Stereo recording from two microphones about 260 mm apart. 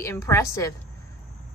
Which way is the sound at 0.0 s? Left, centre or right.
Centre.